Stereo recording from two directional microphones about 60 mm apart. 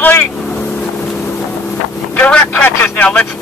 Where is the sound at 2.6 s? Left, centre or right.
Left.